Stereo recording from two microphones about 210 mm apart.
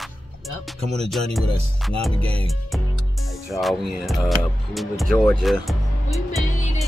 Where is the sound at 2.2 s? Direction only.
25° right (ahead or behind).